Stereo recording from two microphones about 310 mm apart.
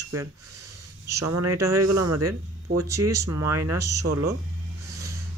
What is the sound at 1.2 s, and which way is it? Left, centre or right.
Speech, right.